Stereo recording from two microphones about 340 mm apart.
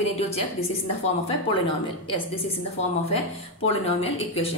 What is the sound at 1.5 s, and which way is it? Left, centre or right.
A woman's voice, centre.